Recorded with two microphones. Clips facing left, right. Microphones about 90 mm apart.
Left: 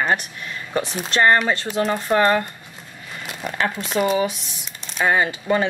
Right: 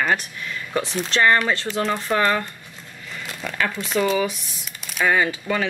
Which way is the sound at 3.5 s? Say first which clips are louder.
Left 1 dB; 25° left (ahead or behind).